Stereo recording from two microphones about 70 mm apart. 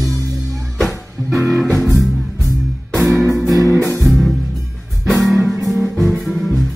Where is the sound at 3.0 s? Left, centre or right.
Centre.